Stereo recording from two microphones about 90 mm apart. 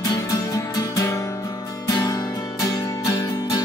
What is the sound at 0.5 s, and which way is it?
Music, 45° left (ahead or behind).